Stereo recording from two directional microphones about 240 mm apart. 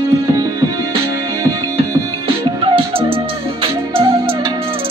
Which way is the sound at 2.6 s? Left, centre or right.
Right.